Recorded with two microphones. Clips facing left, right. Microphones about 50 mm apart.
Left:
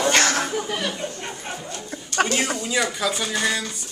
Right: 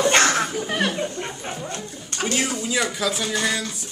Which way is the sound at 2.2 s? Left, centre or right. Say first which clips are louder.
Left 5 dB; left.